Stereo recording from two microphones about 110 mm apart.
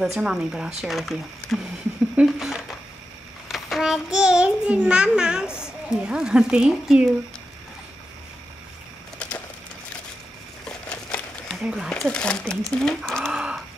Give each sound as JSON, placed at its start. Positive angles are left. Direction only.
{"t": 0.0, "sound": "speech", "side_deg": -5}
{"t": 3.4, "sound": "child singing", "side_deg": 0}
{"t": 10.6, "sound": "crumpling", "side_deg": 10}
{"t": 11.6, "sound": "speech", "side_deg": -5}
{"t": 11.9, "sound": "speech", "side_deg": 10}
{"t": 13.3, "sound": "a sound", "side_deg": -5}